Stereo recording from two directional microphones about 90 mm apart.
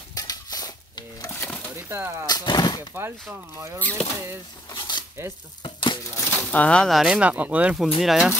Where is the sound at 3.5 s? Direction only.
30° right (ahead or behind).